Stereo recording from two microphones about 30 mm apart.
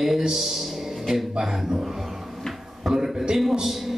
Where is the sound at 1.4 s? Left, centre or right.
Right.